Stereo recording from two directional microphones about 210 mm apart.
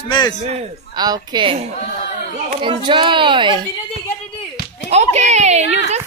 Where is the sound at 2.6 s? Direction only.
25° right (ahead or behind).